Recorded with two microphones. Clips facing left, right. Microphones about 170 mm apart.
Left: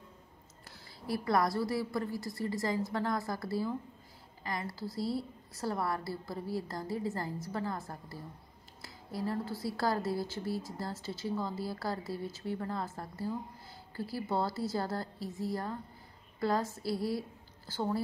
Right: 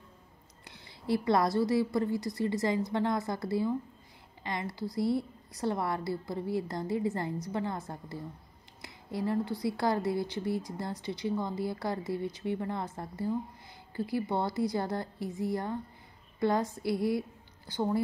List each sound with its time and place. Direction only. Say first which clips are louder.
0.7 s a woman's voice: right 6 dB; 20° right (ahead or behind)
8.8 s a sound: right 3 dB; 20° right (ahead or behind)
9.6 s a woman's voice: right 3 dB; 20° right (ahead or behind)